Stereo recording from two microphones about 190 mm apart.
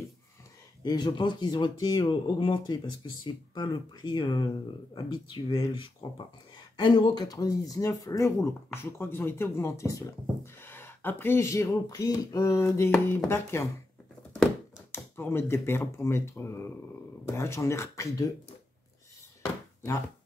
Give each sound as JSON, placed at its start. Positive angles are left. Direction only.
{"t": 0.8, "sound": "speech", "side_deg": 25}